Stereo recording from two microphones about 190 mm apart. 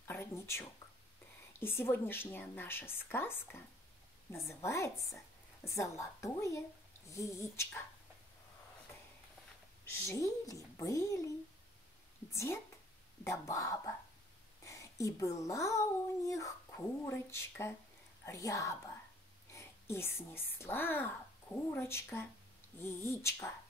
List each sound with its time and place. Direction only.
0.0 s a woman's voice: 15° left (ahead or behind)
10.0 s a woman's voice: 15° left (ahead or behind)
12.3 s a woman's voice: 15° left (ahead or behind)